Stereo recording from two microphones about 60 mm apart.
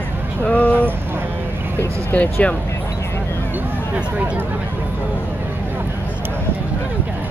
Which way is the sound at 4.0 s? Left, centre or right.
Right.